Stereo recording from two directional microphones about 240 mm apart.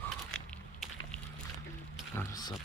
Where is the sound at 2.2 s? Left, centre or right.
Centre.